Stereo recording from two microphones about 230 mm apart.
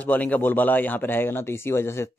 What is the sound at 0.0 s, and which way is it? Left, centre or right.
A man's voice, centre.